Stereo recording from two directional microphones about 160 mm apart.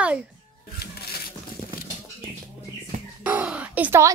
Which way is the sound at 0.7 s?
75° left (ahead or behind).